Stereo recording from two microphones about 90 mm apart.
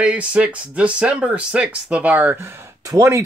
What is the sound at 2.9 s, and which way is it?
Speech, 35° right (ahead or behind).